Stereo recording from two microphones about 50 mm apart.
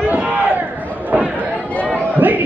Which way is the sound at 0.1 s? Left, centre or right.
Right.